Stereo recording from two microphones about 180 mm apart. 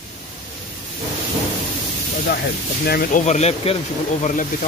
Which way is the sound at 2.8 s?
55° left (ahead or behind).